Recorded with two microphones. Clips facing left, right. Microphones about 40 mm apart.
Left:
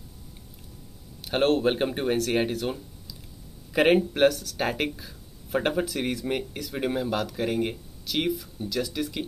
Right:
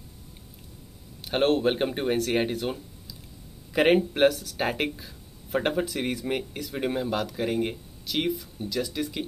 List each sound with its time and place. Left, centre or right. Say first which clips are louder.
1.2 s speech: even; centre